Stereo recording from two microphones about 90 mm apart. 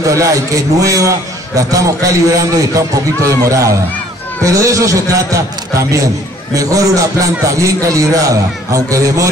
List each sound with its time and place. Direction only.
0.0 s a man's voice: 35° right (ahead or behind)